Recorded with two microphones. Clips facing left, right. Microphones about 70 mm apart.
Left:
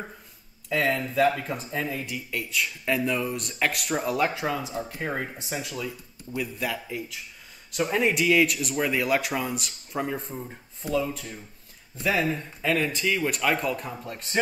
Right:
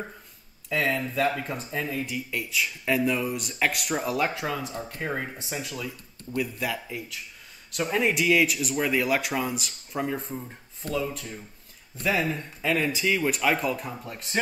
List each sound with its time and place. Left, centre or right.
0.7 s speech: centre